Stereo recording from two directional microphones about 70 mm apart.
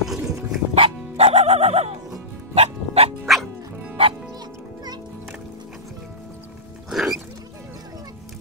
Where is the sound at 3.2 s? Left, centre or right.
Centre.